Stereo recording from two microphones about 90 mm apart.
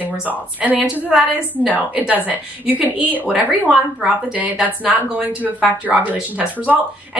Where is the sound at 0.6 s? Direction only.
15° right (ahead or behind).